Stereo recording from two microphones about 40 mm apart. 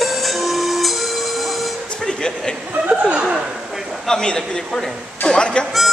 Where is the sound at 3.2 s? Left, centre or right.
Centre.